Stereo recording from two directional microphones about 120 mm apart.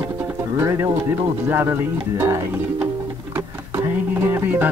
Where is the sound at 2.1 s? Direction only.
20° right (ahead or behind).